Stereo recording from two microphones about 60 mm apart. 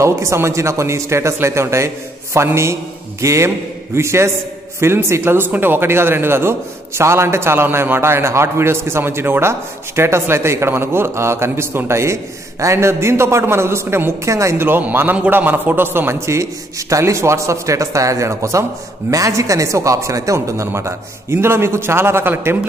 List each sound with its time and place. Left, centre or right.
0.0 s a man's voice: right
14.3 s speech: right
14.7 s a man's voice: right